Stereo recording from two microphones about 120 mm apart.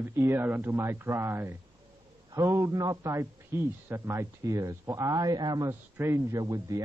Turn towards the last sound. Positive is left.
turn(degrees=-30)  # may be behind; listen again after turning